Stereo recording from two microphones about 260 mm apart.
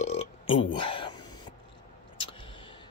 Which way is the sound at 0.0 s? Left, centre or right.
Left.